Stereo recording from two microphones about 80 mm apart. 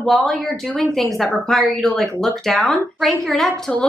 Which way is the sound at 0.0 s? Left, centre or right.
Centre.